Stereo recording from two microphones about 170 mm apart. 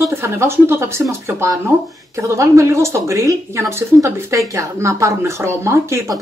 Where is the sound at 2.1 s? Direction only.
15° right (ahead or behind).